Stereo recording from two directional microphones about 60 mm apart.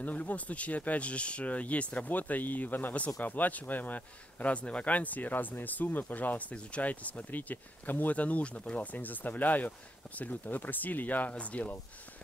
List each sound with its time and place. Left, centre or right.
0.0 s speech: left